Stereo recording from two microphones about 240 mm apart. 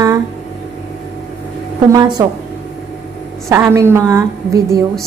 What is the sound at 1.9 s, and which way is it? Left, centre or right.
Speech, centre.